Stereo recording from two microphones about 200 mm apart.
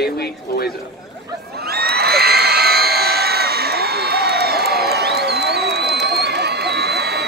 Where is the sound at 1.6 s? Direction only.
50° right (ahead or behind).